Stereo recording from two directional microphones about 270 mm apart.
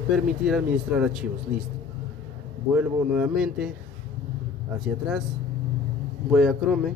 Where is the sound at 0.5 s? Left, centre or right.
Centre.